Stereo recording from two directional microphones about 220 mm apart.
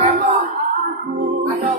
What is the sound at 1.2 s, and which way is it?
Music, 40° right (ahead or behind).